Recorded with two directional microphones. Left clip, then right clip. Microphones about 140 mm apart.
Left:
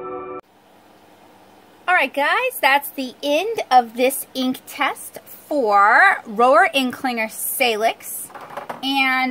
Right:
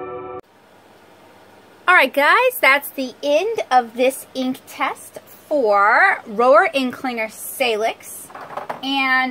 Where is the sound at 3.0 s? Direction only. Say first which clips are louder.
Right 2 dB; 5° left (ahead or behind).